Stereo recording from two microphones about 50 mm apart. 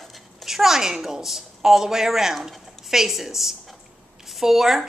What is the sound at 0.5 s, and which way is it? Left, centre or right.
A woman's voice, centre.